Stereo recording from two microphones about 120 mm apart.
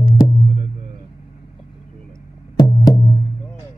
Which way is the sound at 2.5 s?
35° left (ahead or behind).